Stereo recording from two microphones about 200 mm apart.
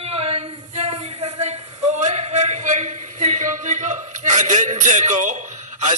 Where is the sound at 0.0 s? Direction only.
30° right (ahead or behind).